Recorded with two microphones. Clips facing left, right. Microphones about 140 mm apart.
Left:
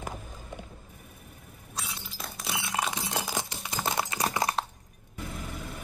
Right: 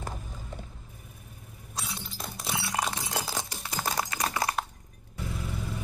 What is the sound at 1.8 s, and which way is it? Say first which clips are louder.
Glass: right 1 dB; 5° left (ahead or behind).